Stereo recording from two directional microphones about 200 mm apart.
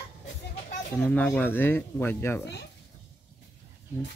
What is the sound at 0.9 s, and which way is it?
Speech, 10° left (ahead or behind).